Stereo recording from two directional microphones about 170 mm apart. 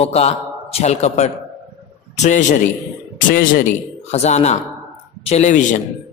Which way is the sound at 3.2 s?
55° left (ahead or behind).